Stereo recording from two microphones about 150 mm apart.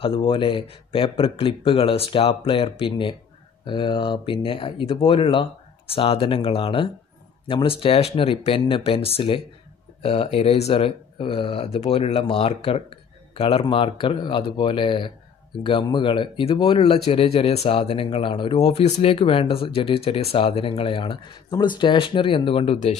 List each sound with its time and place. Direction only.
0.0 s speech: 35° left (ahead or behind)